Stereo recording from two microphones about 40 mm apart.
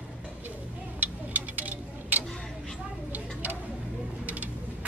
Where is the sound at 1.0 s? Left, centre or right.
Right.